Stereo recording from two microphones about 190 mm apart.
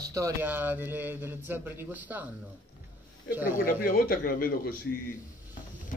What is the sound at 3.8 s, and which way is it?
Speech, 50° left (ahead or behind).